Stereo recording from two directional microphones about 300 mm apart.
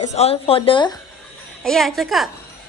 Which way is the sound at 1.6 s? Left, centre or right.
Centre.